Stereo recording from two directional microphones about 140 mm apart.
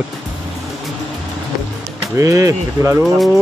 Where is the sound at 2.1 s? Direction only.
20° right (ahead or behind).